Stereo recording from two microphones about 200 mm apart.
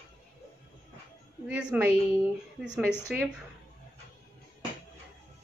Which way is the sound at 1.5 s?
5° right (ahead or behind).